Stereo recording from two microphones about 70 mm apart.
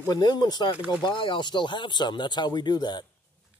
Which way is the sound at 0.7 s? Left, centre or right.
Centre.